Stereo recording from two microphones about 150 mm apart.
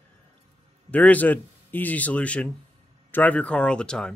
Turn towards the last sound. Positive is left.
turn(degrees=5)  # may be behind; listen again after turning